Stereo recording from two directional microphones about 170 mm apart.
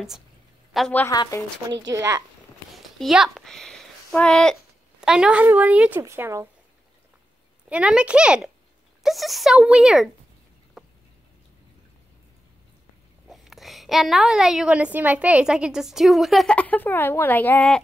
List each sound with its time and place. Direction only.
0.7 s a woman's voice: 5° left (ahead or behind)
1.0 s speech: 20° left (ahead or behind)
1.9 s speech: 20° right (ahead or behind)
2.7 s a child's voice: centre (ahead or behind)
7.7 s a woman's voice: 5° right (ahead or behind)
10.8 s a sound: centre (ahead or behind)
13.3 s a woman's voice: centre (ahead or behind)